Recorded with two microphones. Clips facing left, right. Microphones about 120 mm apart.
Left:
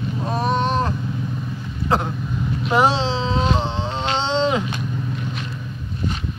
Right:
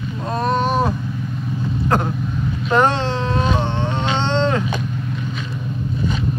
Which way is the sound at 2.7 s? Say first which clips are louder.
Right 1 dB; 10° left (ahead or behind).